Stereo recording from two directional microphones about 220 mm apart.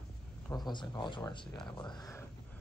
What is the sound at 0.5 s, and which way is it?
Speech, 20° left (ahead or behind).